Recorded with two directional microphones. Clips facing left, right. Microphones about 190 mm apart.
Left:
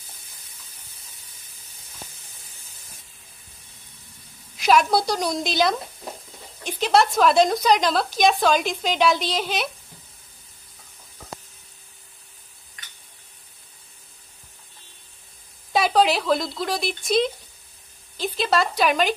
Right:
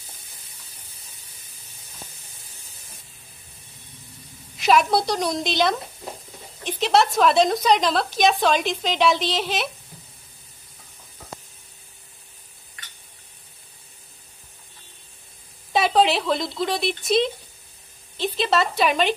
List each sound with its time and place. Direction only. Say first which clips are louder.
4.6 s a woman's voice: even; centre (ahead or behind)
15.7 s speech: even; centre (ahead or behind)